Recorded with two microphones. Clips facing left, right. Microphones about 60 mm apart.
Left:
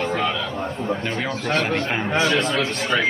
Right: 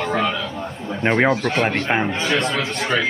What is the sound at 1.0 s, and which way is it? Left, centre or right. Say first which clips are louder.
Speech: right 8 dB; right.